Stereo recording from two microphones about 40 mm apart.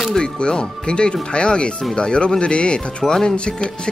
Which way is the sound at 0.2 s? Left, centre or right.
Left.